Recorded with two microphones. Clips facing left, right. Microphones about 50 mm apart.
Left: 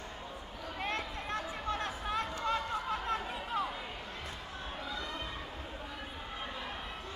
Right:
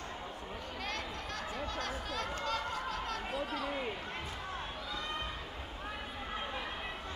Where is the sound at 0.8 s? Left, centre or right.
Left.